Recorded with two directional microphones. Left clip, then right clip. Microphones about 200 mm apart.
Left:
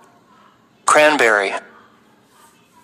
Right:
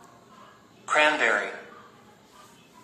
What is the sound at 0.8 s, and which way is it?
Speech, 65° left (ahead or behind).